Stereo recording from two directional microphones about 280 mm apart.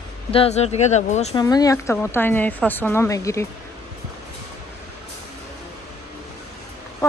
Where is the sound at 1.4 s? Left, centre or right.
Centre.